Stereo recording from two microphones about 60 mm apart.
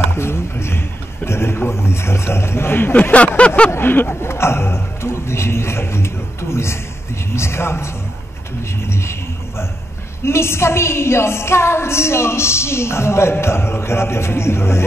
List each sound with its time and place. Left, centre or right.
0.1 s a woman's voice: left; by 3.7 s centre
3.7 s speech: left
4.3 s a woman's voice: left
10.2 s a woman's voice: left